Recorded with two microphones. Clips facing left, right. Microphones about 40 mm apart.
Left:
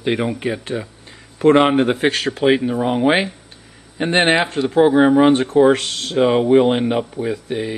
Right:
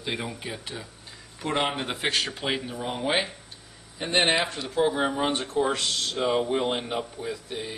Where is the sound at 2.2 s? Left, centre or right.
Left.